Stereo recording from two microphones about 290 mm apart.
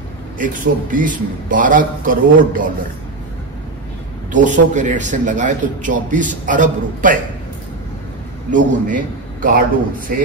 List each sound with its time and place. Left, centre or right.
0.4 s a man's voice: right
4.3 s a man's voice: right
8.5 s a man's voice: right